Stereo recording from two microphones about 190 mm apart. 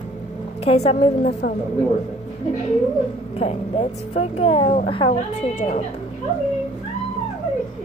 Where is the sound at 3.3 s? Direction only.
30° left (ahead or behind).